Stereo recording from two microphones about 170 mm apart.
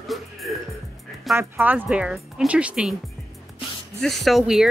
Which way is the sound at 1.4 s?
10° right (ahead or behind).